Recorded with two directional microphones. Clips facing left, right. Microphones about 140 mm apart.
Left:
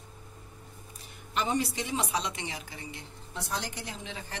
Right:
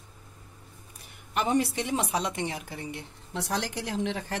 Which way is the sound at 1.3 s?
60° right (ahead or behind).